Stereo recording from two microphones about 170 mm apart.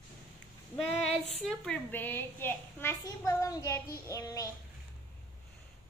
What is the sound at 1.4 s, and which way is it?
A child's voice, 5° left (ahead or behind).